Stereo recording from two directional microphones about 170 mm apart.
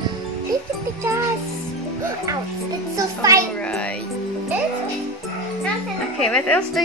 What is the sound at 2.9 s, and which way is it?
Music, 20° right (ahead or behind).